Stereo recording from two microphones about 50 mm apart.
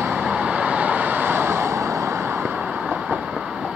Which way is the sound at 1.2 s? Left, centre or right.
Right.